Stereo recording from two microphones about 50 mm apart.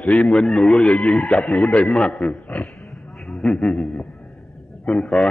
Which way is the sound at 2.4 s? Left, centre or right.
Left.